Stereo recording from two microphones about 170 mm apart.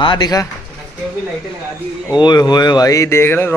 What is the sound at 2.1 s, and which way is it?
Speech, 25° left (ahead or behind).